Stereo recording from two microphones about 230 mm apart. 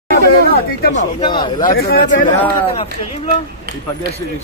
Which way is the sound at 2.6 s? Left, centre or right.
Left.